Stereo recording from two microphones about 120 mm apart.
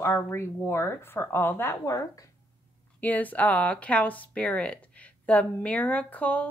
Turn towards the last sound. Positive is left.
turn(degrees=10)  # may be behind; listen again after turning